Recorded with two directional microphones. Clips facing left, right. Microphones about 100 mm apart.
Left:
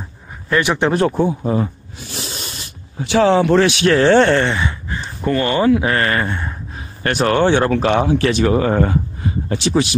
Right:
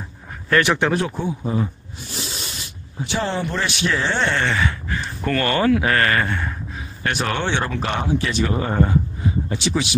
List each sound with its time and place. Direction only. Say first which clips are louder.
0.5 s speech: left 1 dB; 15° left (ahead or behind)
1.0 s speech: left 8 dB; 60° left (ahead or behind)
2.1 s a sound: left 2 dB; 45° left (ahead or behind)
3.0 s speech: left 10 dB; 90° left; by 4.4 s 60° left (ahead or behind)
4.5 s speech: left 1 dB; 20° left (ahead or behind)
7.0 s speech: left 8 dB; 50° left (ahead or behind)
7.7 s speech: left 7 dB; 75° left (ahead or behind)
9.5 s speech: left 5 dB; 55° left (ahead or behind)